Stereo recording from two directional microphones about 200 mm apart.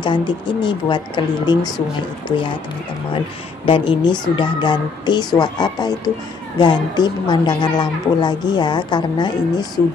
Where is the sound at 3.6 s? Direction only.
25° left (ahead or behind).